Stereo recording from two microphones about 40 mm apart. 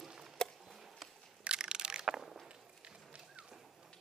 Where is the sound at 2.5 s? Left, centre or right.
Right.